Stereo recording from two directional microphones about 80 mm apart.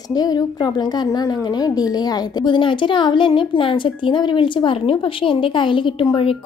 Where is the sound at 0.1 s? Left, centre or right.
Left.